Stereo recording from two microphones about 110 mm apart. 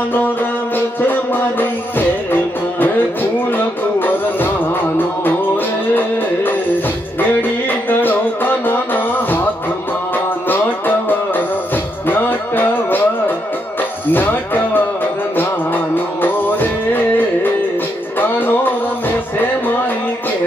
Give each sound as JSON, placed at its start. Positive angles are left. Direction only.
{"t": 0.1, "sound": "music", "side_deg": 20}
{"t": 7.9, "sound": "music", "side_deg": 20}
{"t": 14.1, "sound": "music", "side_deg": 20}